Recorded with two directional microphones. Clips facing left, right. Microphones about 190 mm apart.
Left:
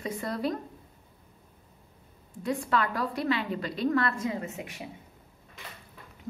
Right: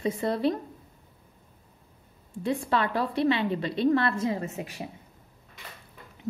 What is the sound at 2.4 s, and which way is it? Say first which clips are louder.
A woman's voice: right 2 dB; 25° right (ahead or behind).